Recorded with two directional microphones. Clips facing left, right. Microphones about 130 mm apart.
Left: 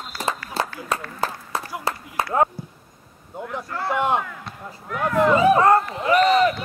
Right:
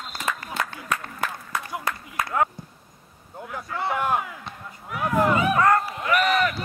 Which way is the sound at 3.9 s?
25° left (ahead or behind).